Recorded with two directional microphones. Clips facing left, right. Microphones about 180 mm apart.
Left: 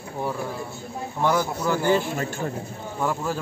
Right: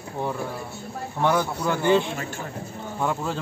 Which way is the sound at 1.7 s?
10° left (ahead or behind).